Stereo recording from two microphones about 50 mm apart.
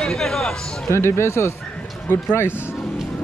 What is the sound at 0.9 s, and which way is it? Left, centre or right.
Speech, left.